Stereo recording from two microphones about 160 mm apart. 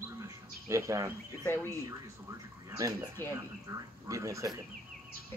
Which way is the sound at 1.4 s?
15° left (ahead or behind).